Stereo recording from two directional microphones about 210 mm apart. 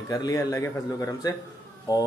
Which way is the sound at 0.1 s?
15° left (ahead or behind).